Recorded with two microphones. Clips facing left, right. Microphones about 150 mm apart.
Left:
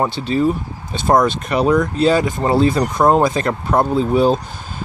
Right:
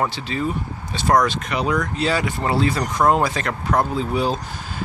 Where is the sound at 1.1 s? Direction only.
25° left (ahead or behind).